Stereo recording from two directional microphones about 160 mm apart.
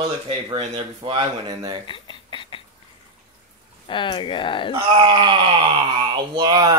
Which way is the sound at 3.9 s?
30° left (ahead or behind).